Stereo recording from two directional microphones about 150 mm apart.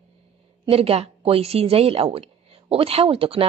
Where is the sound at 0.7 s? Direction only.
40° right (ahead or behind).